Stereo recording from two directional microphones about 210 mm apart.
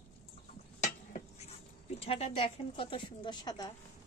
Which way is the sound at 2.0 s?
30° left (ahead or behind).